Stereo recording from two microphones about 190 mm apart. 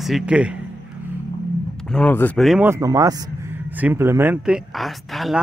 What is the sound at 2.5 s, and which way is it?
Speech, 10° right (ahead or behind).